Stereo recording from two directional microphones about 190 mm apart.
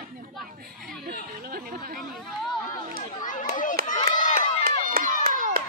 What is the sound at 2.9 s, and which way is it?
Chatter, 45° left (ahead or behind).